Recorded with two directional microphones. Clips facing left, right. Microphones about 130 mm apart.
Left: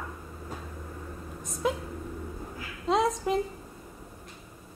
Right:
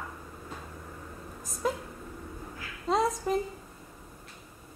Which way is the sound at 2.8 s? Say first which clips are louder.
Left 2 dB; centre (ahead or behind).